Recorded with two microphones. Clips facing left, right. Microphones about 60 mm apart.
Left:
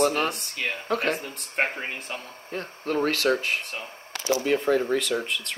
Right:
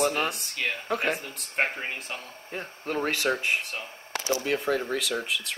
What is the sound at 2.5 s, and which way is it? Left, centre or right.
Speech, centre.